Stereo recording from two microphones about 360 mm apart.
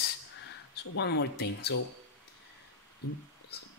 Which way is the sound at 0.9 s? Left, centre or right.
Left.